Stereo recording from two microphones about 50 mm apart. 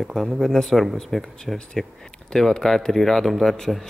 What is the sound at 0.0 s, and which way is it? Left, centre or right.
Speech, centre.